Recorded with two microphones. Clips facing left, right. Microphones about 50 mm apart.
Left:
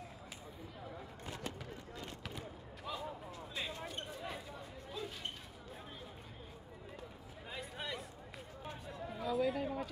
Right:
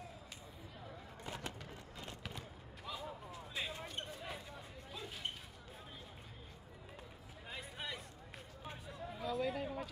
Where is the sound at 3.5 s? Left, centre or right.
Centre.